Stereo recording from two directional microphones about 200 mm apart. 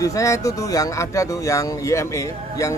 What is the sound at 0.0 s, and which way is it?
Speech, 15° left (ahead or behind).